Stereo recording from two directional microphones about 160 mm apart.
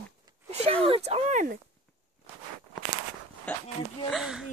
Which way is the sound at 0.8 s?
35° right (ahead or behind).